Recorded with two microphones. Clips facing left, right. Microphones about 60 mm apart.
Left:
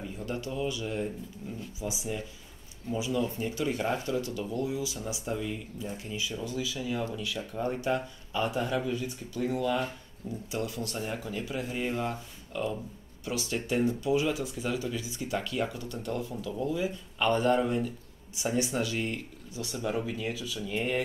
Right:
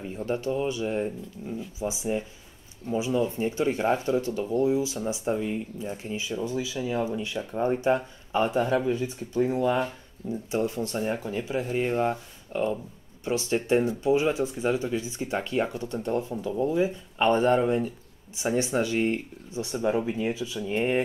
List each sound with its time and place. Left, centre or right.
0.2 s speech: right
11.7 s speech: right